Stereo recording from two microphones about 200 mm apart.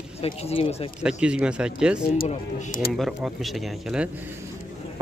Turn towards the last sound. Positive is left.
turn(degrees=0)  # may be behind; listen again after turning